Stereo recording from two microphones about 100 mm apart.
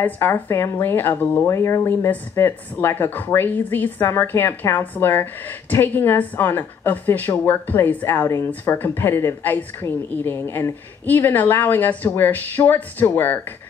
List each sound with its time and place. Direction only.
0.0 s a woman's voice: 20° left (ahead or behind)